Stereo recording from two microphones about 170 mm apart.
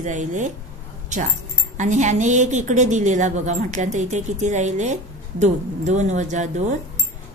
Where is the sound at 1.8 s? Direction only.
45° right (ahead or behind).